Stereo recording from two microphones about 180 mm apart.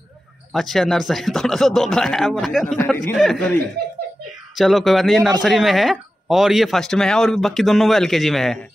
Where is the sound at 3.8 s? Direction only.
60° right (ahead or behind).